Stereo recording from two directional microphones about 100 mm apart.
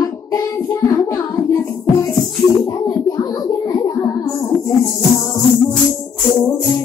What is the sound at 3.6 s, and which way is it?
Child singing, 35° left (ahead or behind).